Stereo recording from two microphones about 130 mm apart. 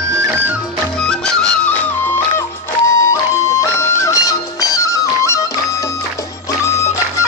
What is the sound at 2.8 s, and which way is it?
Music, 20° left (ahead or behind).